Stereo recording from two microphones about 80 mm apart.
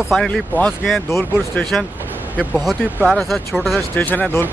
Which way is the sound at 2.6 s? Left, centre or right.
Centre.